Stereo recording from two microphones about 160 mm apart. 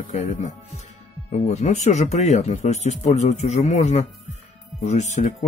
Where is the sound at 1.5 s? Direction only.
45° left (ahead or behind).